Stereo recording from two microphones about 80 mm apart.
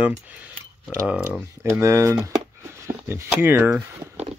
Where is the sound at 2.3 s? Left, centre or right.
Right.